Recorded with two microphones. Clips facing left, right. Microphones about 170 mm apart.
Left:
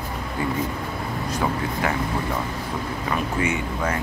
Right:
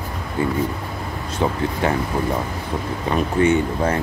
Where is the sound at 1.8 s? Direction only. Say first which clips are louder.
Right 5 dB; 25° right (ahead or behind).